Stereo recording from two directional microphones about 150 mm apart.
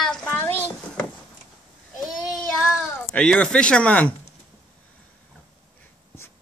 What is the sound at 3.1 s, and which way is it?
Speech, 5° left (ahead or behind).